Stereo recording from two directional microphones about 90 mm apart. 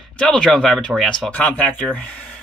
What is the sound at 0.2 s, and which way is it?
Speech, 10° left (ahead or behind).